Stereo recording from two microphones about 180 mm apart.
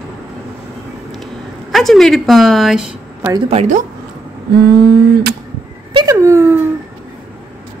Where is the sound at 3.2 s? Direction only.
20° right (ahead or behind).